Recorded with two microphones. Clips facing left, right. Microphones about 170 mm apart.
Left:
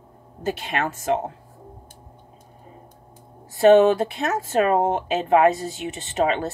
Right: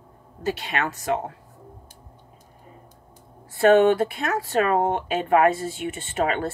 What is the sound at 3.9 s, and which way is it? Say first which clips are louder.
Speech: even; 25° left (ahead or behind).